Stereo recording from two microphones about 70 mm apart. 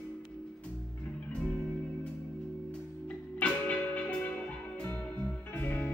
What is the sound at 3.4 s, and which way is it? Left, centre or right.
Music, centre.